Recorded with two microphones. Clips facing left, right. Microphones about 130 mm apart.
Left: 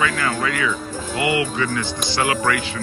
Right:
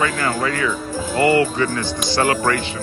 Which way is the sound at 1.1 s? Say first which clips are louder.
Right 5 dB; 40° right (ahead or behind).